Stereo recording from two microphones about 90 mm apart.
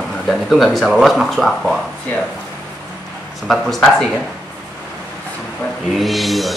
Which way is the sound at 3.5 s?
Centre (ahead or behind).